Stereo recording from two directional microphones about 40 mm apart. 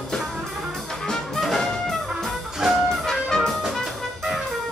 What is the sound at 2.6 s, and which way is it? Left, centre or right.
Music, centre.